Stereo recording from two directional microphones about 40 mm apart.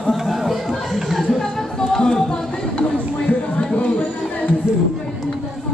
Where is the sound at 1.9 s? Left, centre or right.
Centre.